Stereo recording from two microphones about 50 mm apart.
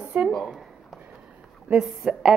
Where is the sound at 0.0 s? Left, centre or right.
Right.